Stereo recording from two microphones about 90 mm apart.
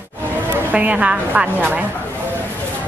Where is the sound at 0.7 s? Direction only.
15° right (ahead or behind).